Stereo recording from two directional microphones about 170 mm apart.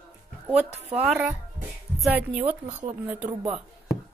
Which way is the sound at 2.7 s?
40° right (ahead or behind).